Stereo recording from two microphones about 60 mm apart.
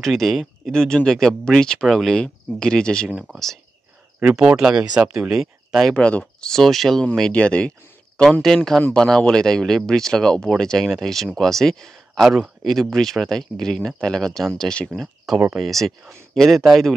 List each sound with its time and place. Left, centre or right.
0.0 s speech: centre
0.7 s speech: centre
1.9 s speech: centre
2.1 s speech: centre
4.2 s speech: centre
5.3 s speech: centre
5.9 s speech: centre
6.5 s speech: centre
7.3 s speech: centre
8.2 s speech: centre
12.3 s speech: centre
12.9 s speech: centre
15.3 s speech: centre